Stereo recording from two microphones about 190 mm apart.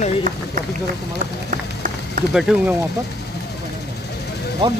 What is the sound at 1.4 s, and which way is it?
Run, 45° right (ahead or behind).